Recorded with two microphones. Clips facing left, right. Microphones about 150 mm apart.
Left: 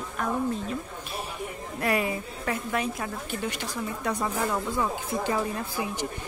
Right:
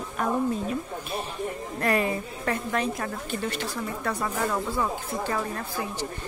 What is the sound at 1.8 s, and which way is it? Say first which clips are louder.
A woman's voice: right 2 dB; 10° left (ahead or behind).